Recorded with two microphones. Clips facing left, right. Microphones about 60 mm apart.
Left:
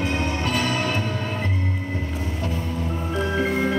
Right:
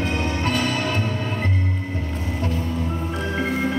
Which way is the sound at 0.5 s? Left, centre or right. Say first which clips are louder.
Even; centre.